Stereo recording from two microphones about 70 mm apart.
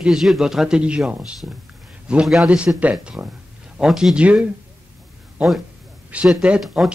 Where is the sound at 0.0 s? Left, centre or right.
Centre.